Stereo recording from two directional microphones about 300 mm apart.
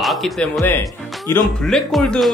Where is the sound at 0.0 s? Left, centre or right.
Centre.